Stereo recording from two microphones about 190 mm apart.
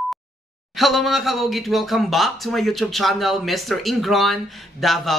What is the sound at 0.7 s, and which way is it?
Speech, centre (ahead or behind).